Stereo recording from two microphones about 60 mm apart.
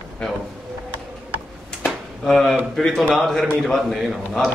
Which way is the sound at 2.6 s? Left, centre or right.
Centre.